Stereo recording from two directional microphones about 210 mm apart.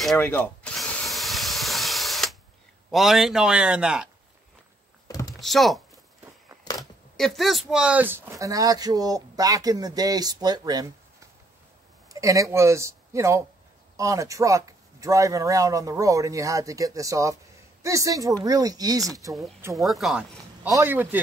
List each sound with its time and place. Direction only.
0.0 s drill: 5° left (ahead or behind)
2.9 s a man's voice: centre (ahead or behind)
5.0 s a sound: 15° left (ahead or behind)
5.4 s a man's voice: centre (ahead or behind)
6.8 s speech: centre (ahead or behind); by 19.3 s 15° right (ahead or behind)
19.7 s a man's voice: centre (ahead or behind)